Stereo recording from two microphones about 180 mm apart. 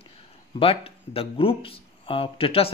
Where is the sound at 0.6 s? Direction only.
30° left (ahead or behind).